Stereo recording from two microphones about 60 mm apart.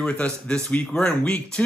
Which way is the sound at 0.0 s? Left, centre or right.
Centre.